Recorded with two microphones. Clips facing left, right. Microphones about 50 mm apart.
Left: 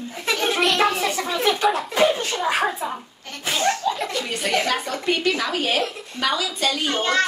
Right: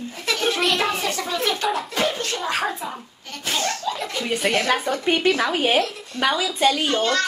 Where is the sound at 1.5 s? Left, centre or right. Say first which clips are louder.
Left 3 dB; centre.